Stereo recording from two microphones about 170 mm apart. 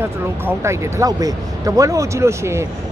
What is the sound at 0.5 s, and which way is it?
Speech, 15° right (ahead or behind).